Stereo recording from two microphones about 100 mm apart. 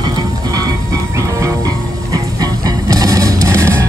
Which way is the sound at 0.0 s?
40° right (ahead or behind).